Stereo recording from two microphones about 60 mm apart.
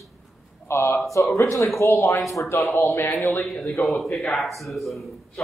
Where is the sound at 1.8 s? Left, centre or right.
Left.